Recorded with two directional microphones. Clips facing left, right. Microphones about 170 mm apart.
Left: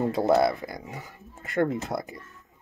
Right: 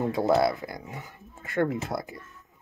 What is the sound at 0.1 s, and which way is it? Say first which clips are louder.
Speech: even; 25° left (ahead or behind).